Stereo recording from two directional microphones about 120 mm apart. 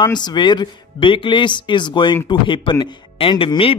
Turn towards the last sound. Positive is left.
turn(degrees=45)  # may be behind; listen again after turning